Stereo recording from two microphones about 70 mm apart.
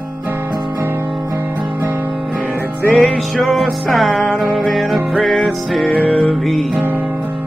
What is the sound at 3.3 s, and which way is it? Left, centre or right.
Music, centre.